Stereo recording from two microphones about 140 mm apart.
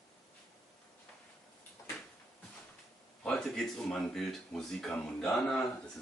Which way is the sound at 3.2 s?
5° left (ahead or behind).